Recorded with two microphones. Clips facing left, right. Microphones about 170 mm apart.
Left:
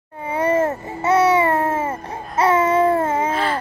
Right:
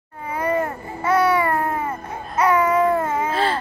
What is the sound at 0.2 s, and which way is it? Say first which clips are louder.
Babbling: left 4 dB; 25° left (ahead or behind).